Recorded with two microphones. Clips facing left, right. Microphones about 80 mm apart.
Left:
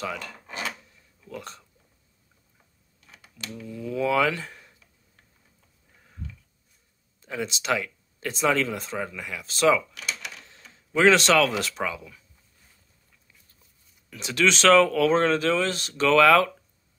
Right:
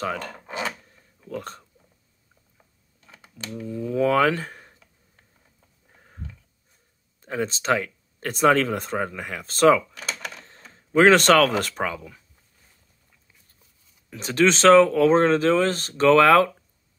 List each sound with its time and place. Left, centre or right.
0.0 s speech: right
0.5 s filing: right
1.2 s speech: right
3.1 s computer keyboard: right
3.5 s speech: right
4.1 s speech: right
7.2 s speech: right
14.1 s speech: right